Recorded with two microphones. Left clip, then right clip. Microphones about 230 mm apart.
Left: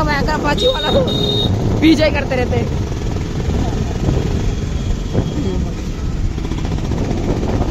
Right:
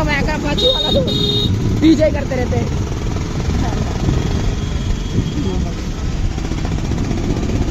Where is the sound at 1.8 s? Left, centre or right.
Left.